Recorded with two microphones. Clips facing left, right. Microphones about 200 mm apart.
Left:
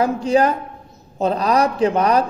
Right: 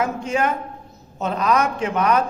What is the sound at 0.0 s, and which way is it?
A man's voice, 35° left (ahead or behind).